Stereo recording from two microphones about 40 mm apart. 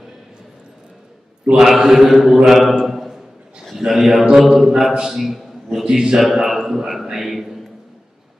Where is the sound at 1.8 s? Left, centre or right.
Centre.